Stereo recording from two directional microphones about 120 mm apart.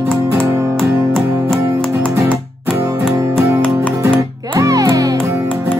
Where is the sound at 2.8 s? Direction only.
25° right (ahead or behind).